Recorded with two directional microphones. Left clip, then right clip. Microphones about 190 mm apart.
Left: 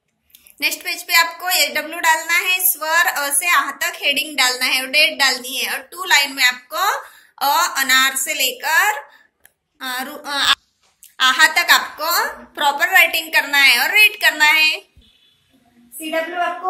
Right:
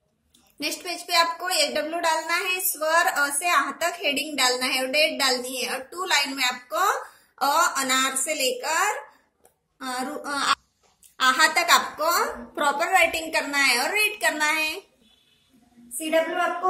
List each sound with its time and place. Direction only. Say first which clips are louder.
0.6 s a woman's voice: left 9 dB; 25° right (ahead or behind)